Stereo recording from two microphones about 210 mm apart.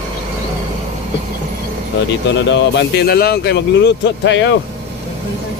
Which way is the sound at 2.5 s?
55° left (ahead or behind).